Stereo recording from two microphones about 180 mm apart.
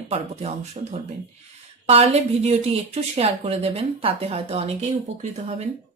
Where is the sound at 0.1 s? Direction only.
35° right (ahead or behind).